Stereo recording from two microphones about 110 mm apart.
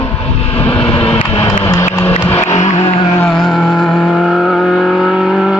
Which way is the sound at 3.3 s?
5° left (ahead or behind).